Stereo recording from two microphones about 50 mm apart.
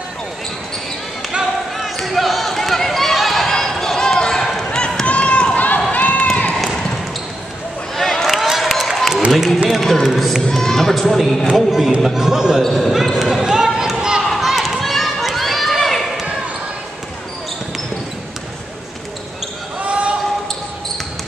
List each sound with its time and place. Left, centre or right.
1.8 s basketball bounce: centre
5.0 s run: left
6.5 s basketball bounce: centre
7.9 s a sound: centre
9.7 s a man's voice: centre
10.5 s a man's voice: centre
13.2 s run: centre
14.2 s run: centre
19.8 s basketball bounce: right